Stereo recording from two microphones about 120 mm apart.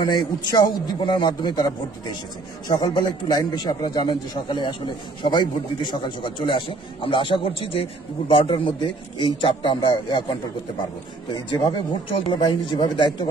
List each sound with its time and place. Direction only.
0.0 s a man's voice: 35° left (ahead or behind)
11.3 s a man's voice: 35° left (ahead or behind)